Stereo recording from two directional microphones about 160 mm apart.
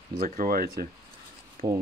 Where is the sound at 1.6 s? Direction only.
60° right (ahead or behind).